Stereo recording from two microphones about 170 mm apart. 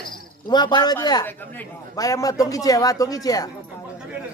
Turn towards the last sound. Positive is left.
turn(degrees=20)  # may be behind; listen again after turning